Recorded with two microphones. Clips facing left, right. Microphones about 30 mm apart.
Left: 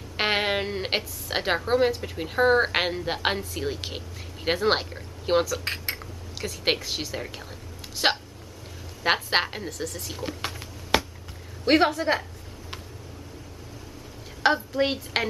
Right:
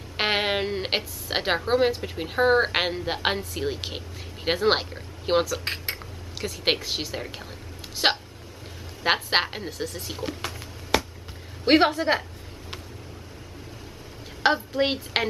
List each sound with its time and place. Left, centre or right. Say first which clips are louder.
0.2 s a woman's voice: even; centre
10.6 s a sound: left 1 dB; centre
11.6 s a woman's voice: right 1 dB; centre
14.4 s a woman's voice: even; centre